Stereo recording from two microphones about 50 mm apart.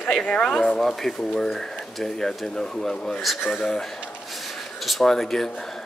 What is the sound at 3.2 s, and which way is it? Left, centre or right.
Speech, centre.